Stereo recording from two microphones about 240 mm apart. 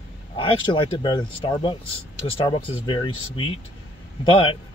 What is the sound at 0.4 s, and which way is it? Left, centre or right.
Speech, left.